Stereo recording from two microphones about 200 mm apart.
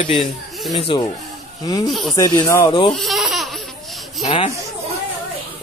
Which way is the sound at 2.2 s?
20° left (ahead or behind).